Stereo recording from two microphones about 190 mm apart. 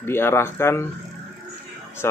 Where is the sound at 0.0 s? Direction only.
10° left (ahead or behind).